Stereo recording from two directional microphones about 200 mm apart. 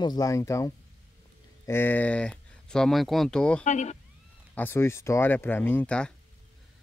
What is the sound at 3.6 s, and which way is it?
Speech, 35° left (ahead or behind).